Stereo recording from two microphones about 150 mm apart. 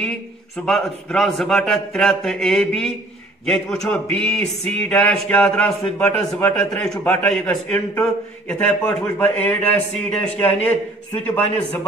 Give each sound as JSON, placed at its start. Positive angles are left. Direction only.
{"t": 0.7, "sound": "a man's voice", "side_deg": 5}